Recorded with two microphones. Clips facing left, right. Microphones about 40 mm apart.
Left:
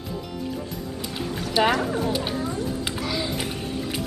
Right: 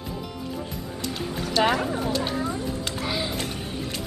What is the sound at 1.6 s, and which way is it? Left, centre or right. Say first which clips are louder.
Speech: left 1 dB; centre.